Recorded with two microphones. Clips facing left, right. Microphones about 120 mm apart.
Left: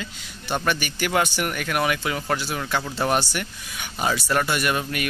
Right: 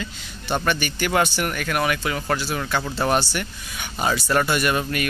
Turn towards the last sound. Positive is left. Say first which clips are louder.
# right 2 dB
turn(degrees=5)  # may be behind; listen again after turning